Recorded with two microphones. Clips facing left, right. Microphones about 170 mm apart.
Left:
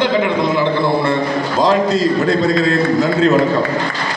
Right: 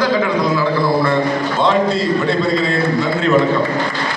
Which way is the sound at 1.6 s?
40° left (ahead or behind).